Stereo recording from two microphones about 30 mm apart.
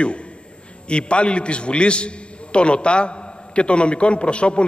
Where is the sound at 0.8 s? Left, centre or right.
Left.